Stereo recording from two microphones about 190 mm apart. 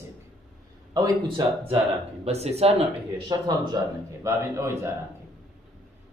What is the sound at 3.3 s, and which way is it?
Speech, 20° right (ahead or behind).